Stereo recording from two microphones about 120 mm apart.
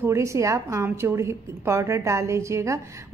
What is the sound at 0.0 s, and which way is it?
A woman's voice, 25° right (ahead or behind).